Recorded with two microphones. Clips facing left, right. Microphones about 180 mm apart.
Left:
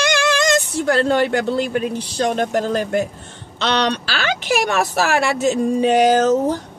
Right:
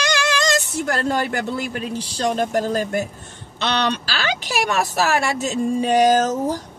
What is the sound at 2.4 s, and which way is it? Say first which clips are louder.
Speech: left 1 dB; 15° right (ahead or behind).